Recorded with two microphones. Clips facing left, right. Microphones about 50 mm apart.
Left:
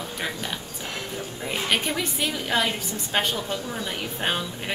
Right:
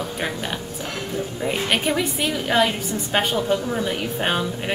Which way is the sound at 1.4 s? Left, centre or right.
Centre.